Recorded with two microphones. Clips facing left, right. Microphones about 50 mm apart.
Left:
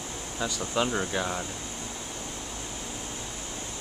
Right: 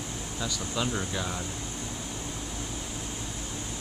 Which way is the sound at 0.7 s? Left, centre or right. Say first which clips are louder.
Left 4 dB; left.